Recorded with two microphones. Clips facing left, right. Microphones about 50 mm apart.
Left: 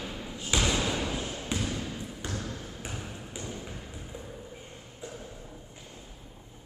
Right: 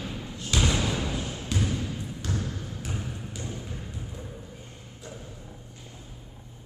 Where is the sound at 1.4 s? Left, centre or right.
Centre.